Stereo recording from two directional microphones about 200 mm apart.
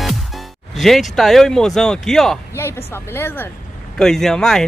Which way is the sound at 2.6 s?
10° left (ahead or behind).